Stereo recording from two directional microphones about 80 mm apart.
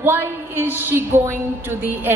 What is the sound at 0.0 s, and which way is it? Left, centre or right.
A woman's voice, right.